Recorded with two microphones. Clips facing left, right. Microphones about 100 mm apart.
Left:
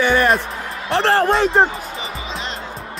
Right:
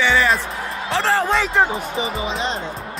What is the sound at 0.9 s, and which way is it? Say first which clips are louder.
Speech: left 3 dB; 65° left (ahead or behind).